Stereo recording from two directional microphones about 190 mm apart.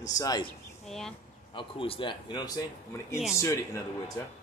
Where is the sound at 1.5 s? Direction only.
30° left (ahead or behind).